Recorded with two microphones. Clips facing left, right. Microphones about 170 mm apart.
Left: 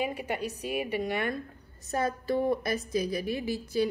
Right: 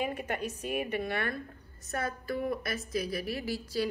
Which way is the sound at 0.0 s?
10° left (ahead or behind).